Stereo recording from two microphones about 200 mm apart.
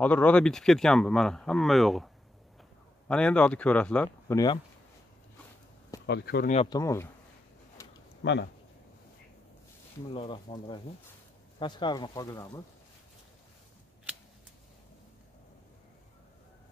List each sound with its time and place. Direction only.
0.0 s speech: 5° left (ahead or behind)
3.1 s speech: 5° left (ahead or behind)
6.0 s speech: 55° left (ahead or behind)
6.7 s speech: 15° left (ahead or behind)
7.8 s a sound: 15° left (ahead or behind)
8.2 s speech: 60° left (ahead or behind)
10.1 s speech: 25° left (ahead or behind)